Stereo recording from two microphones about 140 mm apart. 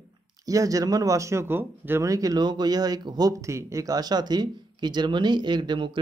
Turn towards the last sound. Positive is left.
turn(degrees=-35)  # may be behind; listen again after turning